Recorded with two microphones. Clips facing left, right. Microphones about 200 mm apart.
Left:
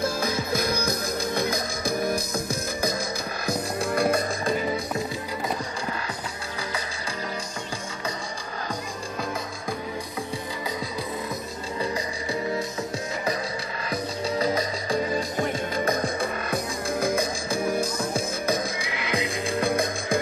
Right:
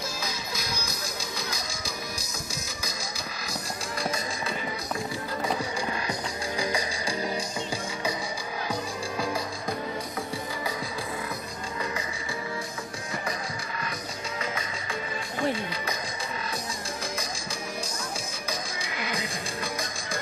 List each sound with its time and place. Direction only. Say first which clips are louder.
0.0 s music: left 9 dB; 55° left (ahead or behind)
14.4 s music: left 9 dB; 35° left (ahead or behind); by 20.2 s 55° left (ahead or behind)